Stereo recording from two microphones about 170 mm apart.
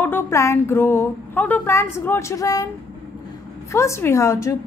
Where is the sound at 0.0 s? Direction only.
15° left (ahead or behind).